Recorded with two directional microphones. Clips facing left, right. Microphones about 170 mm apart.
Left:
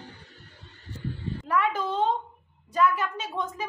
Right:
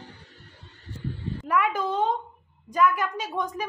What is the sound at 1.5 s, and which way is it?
A child's voice, 10° right (ahead or behind).